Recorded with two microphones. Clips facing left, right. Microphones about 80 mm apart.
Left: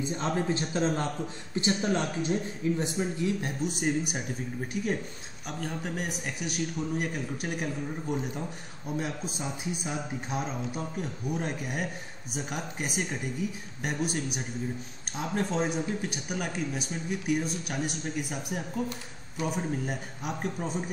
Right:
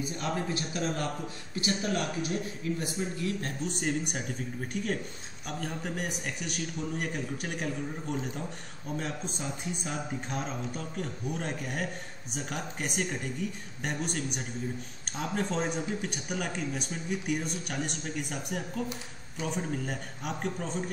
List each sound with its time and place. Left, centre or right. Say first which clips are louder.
0.0 s a man's voice: left 3 dB; left
3.6 s speech: left 3 dB; centre